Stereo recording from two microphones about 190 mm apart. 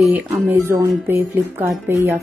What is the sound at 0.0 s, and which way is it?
Speech, centre (ahead or behind).